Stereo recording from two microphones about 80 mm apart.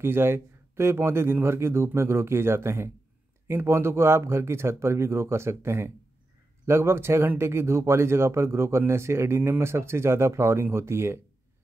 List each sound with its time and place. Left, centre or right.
0.0 s speech: right